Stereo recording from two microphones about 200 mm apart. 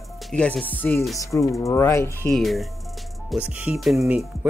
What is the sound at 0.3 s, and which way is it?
Music, 5° left (ahead or behind).